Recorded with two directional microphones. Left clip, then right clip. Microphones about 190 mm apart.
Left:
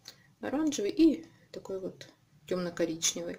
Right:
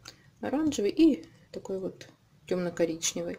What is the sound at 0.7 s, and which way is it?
Speech, 20° right (ahead or behind).